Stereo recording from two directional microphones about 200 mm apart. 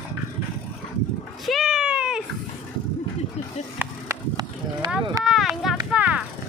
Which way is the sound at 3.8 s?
15° right (ahead or behind).